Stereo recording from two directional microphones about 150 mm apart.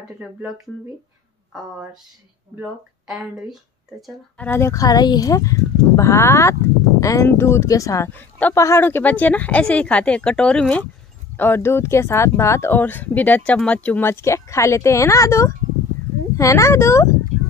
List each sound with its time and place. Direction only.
2.5 s speech: 5° right (ahead or behind)
4.4 s speech: 15° left (ahead or behind)